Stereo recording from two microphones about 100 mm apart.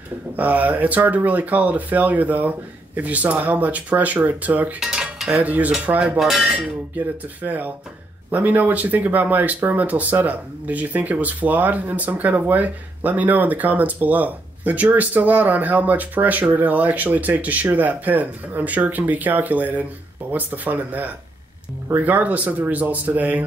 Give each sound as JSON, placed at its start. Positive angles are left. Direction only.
{"t": 0.4, "sound": "speech", "side_deg": -15}
{"t": 7.4, "sound": "speech", "side_deg": -15}